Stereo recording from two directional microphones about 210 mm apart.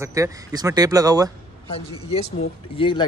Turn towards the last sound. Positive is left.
turn(degrees=25)  # may be behind; listen again after turning